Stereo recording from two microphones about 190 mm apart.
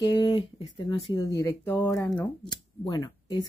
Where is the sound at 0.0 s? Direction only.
20° left (ahead or behind).